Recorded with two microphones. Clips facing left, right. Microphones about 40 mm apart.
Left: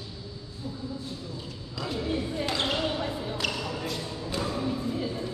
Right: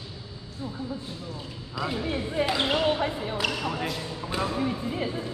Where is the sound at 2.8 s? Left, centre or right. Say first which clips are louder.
Right 4 dB; right.